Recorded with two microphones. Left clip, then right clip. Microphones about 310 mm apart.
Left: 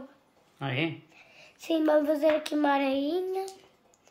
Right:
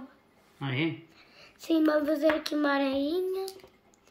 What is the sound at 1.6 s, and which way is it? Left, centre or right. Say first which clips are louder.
Child singing: left 1 dB; centre.